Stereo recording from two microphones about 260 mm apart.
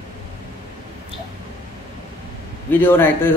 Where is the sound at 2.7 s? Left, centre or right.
Centre.